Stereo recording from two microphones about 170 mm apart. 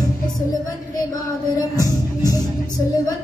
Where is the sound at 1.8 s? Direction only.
20° left (ahead or behind).